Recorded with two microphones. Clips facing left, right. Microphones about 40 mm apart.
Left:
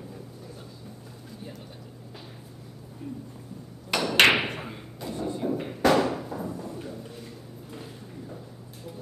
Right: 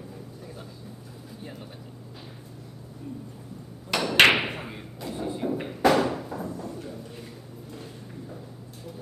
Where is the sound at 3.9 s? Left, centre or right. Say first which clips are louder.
Right 1 dB; centre.